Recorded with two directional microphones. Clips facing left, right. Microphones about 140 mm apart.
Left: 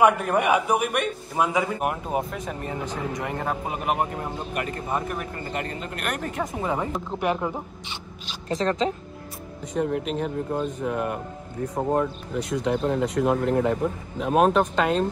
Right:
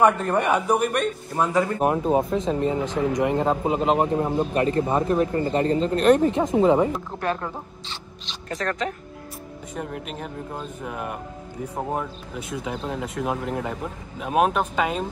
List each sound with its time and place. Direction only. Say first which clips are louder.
0.0 s speech: even; 10° left (ahead or behind)
1.8 s speech: right 6 dB; 25° right (ahead or behind)
7.1 s speech: left 2 dB; 15° left (ahead or behind)
8.5 s speech: left 3 dB; 30° left (ahead or behind)
9.8 s speech: left 7 dB; centre (ahead or behind)